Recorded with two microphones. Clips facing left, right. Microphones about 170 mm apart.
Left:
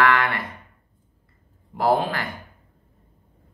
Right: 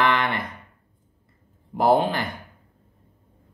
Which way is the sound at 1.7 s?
20° right (ahead or behind).